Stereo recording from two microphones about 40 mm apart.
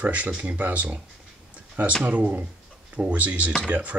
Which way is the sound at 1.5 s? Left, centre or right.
Right.